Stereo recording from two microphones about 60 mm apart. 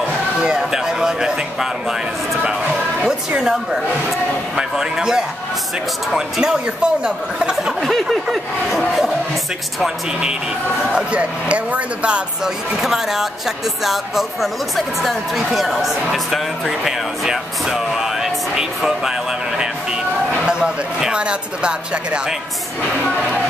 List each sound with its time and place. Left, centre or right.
0.4 s speech: centre
3.0 s speech: centre
12.8 s speech: centre
20.4 s speech: centre